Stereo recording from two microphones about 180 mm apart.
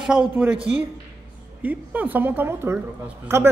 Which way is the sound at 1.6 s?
10° right (ahead or behind).